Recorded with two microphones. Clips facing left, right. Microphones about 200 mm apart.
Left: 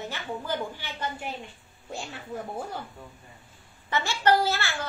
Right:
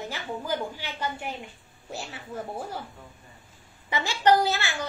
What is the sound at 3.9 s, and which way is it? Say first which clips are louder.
Speech: right 2 dB; 15° right (ahead or behind).